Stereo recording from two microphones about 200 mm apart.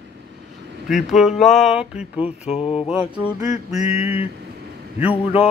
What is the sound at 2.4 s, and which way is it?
Speech, 30° left (ahead or behind).